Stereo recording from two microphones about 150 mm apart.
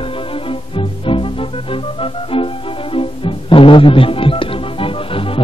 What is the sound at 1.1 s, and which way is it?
Music, 35° left (ahead or behind).